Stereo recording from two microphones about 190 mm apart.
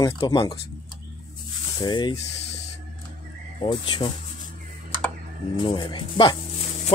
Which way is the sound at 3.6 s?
25° left (ahead or behind).